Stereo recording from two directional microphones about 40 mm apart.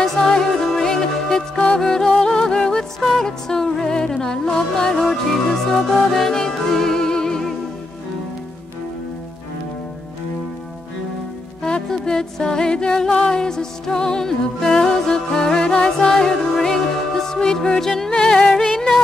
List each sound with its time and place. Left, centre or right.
0.0 s music: centre
11.6 s music: centre
18.1 s music: left